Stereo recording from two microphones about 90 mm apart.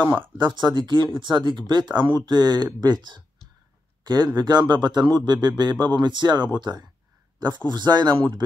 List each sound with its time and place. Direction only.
0.5 s speech: 55° right (ahead or behind)
4.4 s speech: 50° right (ahead or behind)